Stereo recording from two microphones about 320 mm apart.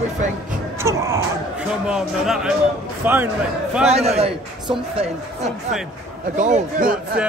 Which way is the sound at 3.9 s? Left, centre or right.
Centre.